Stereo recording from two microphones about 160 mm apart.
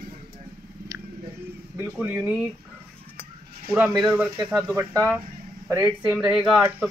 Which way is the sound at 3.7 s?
5° right (ahead or behind).